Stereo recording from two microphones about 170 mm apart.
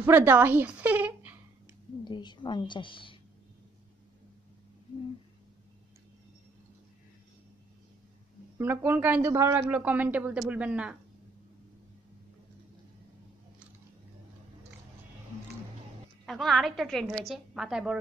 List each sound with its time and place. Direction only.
0.0 s a woman's voice: 10° right (ahead or behind)
2.0 s a woman's voice: 25° left (ahead or behind)
8.5 s a man's voice: 10° right (ahead or behind)
16.3 s a woman's voice: centre (ahead or behind)